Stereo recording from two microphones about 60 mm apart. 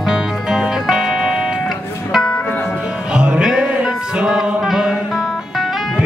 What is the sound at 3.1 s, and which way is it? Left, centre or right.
Music, centre.